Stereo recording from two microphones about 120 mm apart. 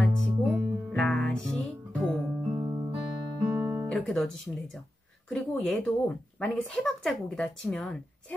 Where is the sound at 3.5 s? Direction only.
20° right (ahead or behind).